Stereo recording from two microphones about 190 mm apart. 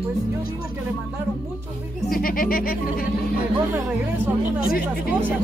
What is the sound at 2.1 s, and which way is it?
Speech, 50° left (ahead or behind).